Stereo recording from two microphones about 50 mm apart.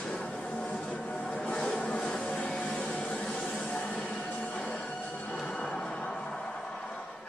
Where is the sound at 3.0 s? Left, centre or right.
Left.